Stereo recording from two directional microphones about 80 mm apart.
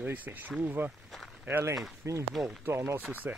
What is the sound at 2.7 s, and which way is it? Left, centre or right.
Speech, right.